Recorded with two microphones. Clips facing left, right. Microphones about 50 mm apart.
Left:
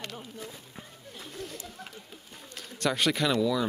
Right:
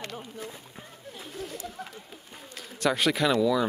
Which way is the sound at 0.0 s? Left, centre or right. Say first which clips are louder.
Right 2 dB; centre.